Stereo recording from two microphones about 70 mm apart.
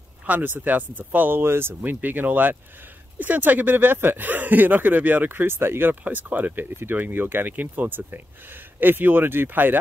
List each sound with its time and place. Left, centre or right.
0.3 s speech: right
1.8 s speech: right